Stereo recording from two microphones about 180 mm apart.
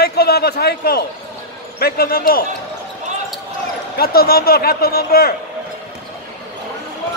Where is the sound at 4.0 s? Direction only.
55° left (ahead or behind).